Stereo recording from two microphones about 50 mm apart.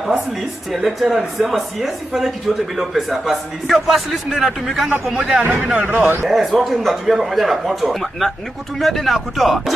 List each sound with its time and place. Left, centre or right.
0.7 s a man's voice: centre
5.8 s speech: right
6.2 s speech: centre